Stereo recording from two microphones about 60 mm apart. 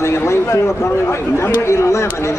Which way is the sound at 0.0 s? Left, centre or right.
Left.